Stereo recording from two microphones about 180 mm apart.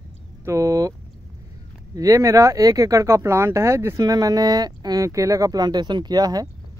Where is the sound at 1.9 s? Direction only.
20° right (ahead or behind).